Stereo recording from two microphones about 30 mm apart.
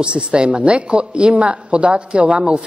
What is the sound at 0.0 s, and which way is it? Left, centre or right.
Speech, right.